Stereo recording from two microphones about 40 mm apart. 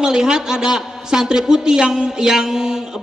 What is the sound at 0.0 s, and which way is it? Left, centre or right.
A man's voice, centre.